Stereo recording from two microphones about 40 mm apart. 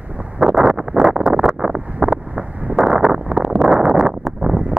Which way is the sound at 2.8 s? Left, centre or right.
Centre.